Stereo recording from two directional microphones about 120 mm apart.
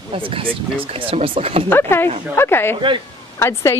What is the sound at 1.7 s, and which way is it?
Speech, 20° left (ahead or behind).